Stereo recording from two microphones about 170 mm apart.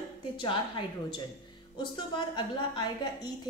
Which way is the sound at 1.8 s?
30° left (ahead or behind).